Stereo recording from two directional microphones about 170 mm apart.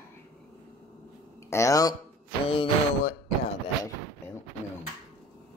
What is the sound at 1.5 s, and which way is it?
Speech, 20° left (ahead or behind).